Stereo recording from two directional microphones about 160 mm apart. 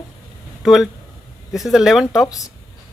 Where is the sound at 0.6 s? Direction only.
Centre (ahead or behind).